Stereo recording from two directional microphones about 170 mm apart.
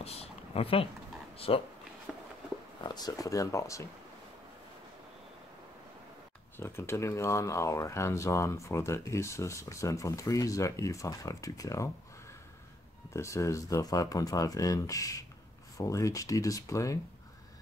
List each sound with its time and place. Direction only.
0.0 s speech: 35° left (ahead or behind)
2.1 s a sound: 5° right (ahead or behind)
2.8 s speech: 25° left (ahead or behind)
6.5 s speech: 15° left (ahead or behind)
13.1 s speech: 15° left (ahead or behind)